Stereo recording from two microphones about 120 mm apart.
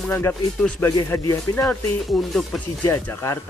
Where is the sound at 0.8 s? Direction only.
30° left (ahead or behind).